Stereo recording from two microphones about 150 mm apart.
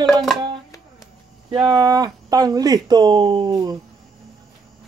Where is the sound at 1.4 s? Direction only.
30° right (ahead or behind).